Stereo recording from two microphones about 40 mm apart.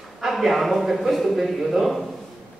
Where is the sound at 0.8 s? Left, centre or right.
Centre.